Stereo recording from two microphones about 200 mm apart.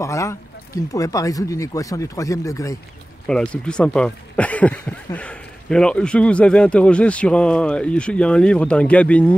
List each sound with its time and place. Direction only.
0.0 s speech: 15° left (ahead or behind)
3.3 s speech: 5° left (ahead or behind)